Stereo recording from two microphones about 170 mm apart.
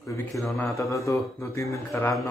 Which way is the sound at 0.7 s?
20° left (ahead or behind).